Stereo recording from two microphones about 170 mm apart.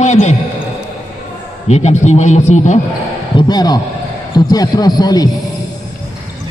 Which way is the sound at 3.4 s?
25° left (ahead or behind).